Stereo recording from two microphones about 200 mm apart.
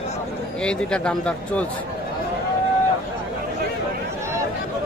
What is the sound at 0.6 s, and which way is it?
Speech, 5° left (ahead or behind).